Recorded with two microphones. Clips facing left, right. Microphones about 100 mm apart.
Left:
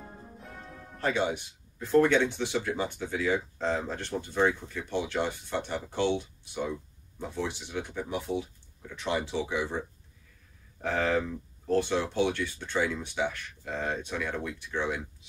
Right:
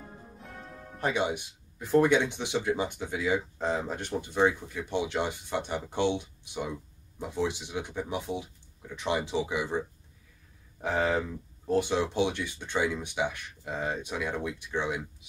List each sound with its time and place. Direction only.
0.9 s speech: 15° right (ahead or behind)